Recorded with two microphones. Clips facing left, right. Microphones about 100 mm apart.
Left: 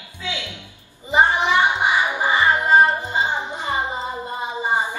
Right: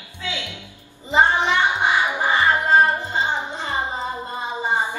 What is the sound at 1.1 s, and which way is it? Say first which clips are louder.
Music: left 1 dB; 15° left (ahead or behind).